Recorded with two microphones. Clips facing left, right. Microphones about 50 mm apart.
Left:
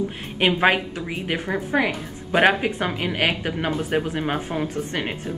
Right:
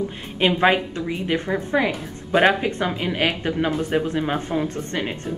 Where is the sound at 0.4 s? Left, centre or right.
Centre.